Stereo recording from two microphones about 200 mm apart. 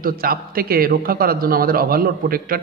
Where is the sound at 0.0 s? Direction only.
45° right (ahead or behind).